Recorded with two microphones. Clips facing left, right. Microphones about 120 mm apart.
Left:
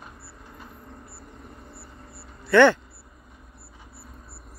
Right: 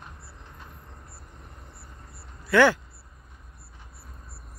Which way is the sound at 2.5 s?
5° right (ahead or behind).